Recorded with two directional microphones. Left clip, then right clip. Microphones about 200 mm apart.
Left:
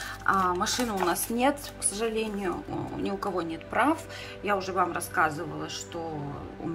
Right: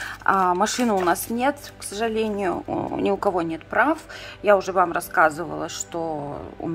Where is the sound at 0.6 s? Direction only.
15° right (ahead or behind).